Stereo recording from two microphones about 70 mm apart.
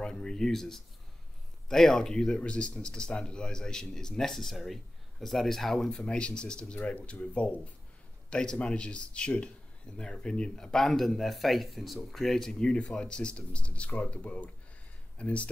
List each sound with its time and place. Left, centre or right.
0.0 s speech: centre